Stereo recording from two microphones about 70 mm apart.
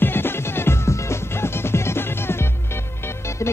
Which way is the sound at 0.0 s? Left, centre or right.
Left.